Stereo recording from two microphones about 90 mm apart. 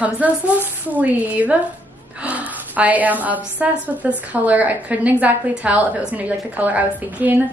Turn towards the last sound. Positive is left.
turn(degrees=-20)  # may be behind; listen again after turning